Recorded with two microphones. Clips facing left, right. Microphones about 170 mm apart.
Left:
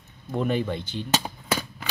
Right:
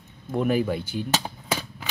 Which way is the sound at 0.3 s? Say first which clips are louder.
Right 2 dB; 5° right (ahead or behind).